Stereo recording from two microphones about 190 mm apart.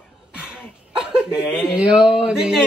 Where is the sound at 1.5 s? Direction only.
5° right (ahead or behind).